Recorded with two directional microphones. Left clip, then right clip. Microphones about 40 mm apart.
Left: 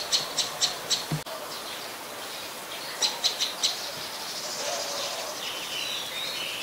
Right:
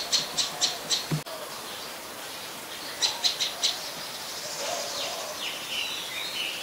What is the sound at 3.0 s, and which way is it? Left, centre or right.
Bird, right.